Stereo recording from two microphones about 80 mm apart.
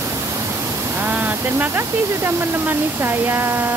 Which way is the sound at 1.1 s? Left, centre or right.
Right.